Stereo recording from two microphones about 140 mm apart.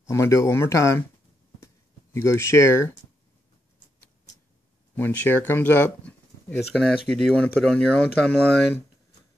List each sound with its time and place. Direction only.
0.0 s speech: 20° left (ahead or behind)
2.1 s speech: 20° left (ahead or behind)
4.9 s speech: 15° left (ahead or behind)